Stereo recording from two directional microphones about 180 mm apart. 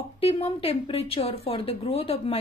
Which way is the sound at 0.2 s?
30° left (ahead or behind).